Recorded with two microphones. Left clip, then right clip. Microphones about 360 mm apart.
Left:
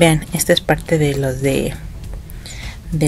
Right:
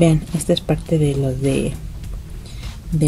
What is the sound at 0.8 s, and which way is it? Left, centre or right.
Speech, left.